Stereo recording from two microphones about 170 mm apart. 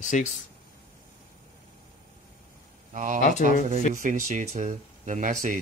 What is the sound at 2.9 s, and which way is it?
Speech, 50° right (ahead or behind).